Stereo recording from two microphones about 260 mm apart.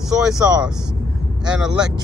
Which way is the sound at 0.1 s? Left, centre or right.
Centre.